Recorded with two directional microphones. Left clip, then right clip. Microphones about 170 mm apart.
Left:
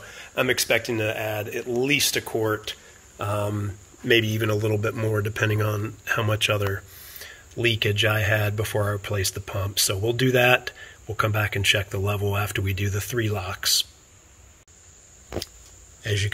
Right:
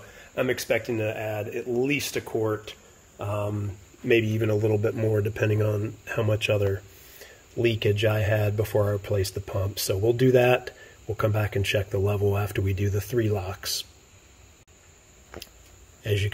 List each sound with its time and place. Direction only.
0.1 s speech: 5° left (ahead or behind)
4.0 s speech: 5° right (ahead or behind)
16.0 s speech: 10° right (ahead or behind)